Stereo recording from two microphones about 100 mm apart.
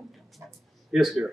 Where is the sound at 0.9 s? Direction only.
5° right (ahead or behind).